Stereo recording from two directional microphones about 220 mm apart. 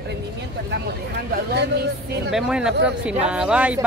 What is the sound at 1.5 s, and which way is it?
Speech, 50° right (ahead or behind).